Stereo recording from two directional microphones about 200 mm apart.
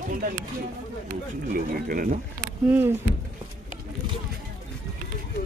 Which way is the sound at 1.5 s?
45° right (ahead or behind).